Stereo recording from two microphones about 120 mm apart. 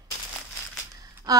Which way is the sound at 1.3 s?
30° right (ahead or behind).